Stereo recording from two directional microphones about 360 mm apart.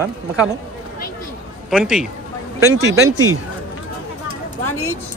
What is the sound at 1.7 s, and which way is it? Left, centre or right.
Speech, centre.